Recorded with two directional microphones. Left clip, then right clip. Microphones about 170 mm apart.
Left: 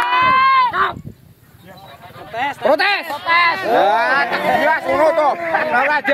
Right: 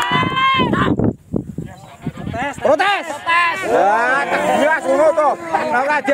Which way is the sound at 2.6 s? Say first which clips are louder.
Right 1 dB; 40° right (ahead or behind).